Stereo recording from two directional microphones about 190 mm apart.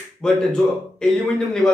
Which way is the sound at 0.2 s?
5° left (ahead or behind).